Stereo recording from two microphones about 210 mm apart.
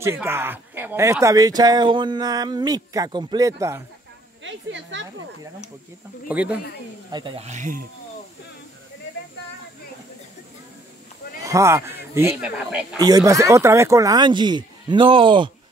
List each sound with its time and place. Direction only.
0.0 s speech: 10° right (ahead or behind)
4.4 s speech: 60° right (ahead or behind)
6.2 s speech: 5° right (ahead or behind)
7.1 s speech: 20° right (ahead or behind)
11.4 s speech: 15° right (ahead or behind)